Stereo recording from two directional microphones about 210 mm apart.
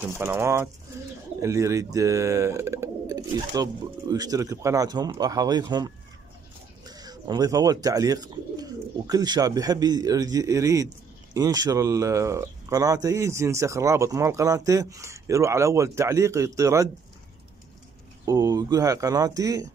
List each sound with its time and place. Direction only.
0.0 s speech: 10° right (ahead or behind)
18.2 s speech: 15° right (ahead or behind)